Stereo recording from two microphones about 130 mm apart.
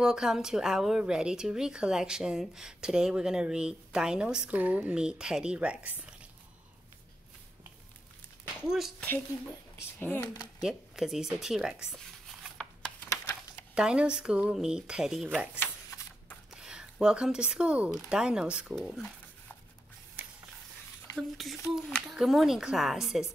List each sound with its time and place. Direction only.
0.0 s speech: 5° right (ahead or behind)
8.5 s speech: 5° right (ahead or behind)
9.8 s speech: 15° left (ahead or behind)
10.2 s speech: 30° left (ahead or behind)
10.6 s speech: 5° right (ahead or behind)
13.7 s speech: 5° right (ahead or behind)
15.6 s typewriter: 15° left (ahead or behind)
16.4 s speech: 5° right (ahead or behind)
18.8 s speech: 5° left (ahead or behind)
21.2 s speech: centre (ahead or behind)